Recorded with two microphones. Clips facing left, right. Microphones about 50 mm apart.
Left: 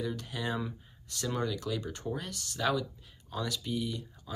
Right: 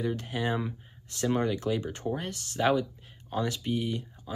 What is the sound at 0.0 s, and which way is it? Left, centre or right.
Speech, right.